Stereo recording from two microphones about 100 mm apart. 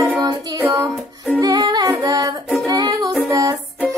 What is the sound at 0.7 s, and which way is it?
Music, 30° right (ahead or behind).